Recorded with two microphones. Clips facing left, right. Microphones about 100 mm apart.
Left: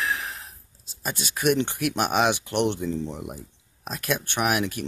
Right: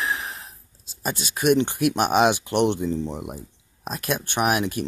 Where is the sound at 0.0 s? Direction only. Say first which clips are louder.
Right 1 dB; 20° right (ahead or behind).